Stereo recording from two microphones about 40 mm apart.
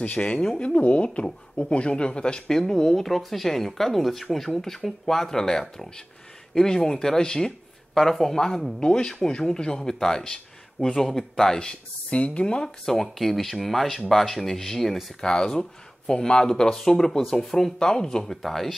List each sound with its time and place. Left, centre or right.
0.0 s speech: left
2.5 s speech: centre; by 12.6 s left
12.6 s speech: centre
15.1 s speech: centre
17.3 s speech: centre
17.7 s speech: centre